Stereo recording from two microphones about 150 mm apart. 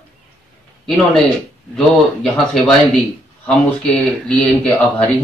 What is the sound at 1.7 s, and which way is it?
Speech, 5° left (ahead or behind).